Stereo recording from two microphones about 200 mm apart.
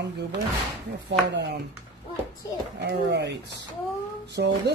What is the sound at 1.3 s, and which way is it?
Speech, 60° right (ahead or behind).